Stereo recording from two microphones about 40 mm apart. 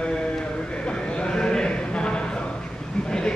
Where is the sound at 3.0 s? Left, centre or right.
Centre.